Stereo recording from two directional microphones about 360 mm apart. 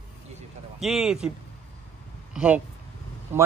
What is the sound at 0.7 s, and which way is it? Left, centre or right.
Speech, centre.